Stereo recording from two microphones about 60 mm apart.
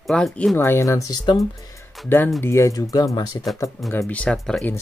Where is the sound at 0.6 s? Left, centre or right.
Left.